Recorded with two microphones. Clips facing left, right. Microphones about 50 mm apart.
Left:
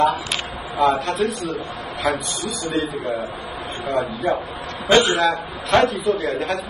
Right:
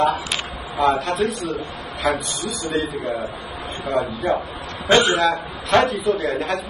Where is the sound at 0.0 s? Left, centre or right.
Centre.